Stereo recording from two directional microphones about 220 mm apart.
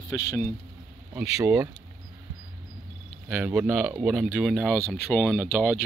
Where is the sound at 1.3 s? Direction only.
10° right (ahead or behind).